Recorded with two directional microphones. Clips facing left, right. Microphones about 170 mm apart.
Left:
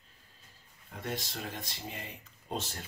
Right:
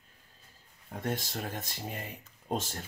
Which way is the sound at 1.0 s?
50° right (ahead or behind).